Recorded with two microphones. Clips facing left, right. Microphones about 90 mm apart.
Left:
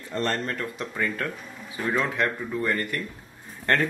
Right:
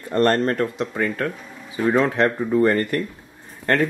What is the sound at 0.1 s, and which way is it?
Speech, 55° right (ahead or behind).